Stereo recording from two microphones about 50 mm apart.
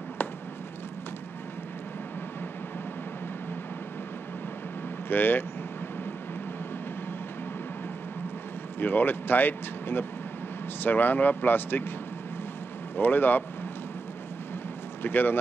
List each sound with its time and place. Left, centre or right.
5.1 s speech: left
8.7 s speech: left
12.9 s speech: left
15.0 s speech: left